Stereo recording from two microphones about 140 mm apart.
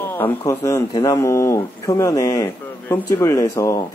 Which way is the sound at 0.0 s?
15° left (ahead or behind).